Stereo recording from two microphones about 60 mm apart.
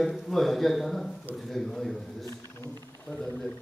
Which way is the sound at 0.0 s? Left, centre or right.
Centre.